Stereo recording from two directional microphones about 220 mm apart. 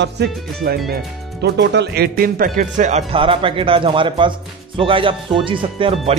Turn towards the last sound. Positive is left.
turn(degrees=-25)  # may be behind; listen again after turning